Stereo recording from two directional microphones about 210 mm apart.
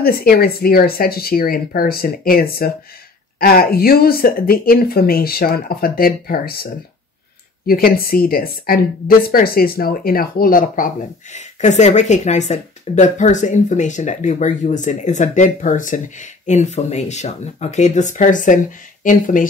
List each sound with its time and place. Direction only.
0.0 s speech: 45° left (ahead or behind)